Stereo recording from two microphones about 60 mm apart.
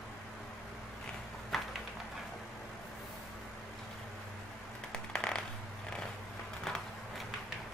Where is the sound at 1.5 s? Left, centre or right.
Centre.